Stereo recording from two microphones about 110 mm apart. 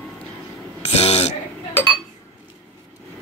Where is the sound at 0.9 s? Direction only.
70° left (ahead or behind).